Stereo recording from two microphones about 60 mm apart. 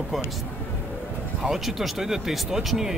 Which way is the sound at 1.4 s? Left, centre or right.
Centre.